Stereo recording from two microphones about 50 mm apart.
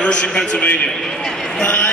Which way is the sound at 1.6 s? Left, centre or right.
Left.